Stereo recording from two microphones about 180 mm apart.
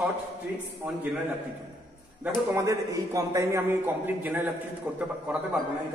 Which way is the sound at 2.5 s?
15° right (ahead or behind).